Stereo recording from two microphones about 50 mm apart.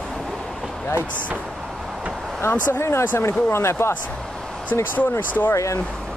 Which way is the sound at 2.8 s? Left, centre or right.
Left.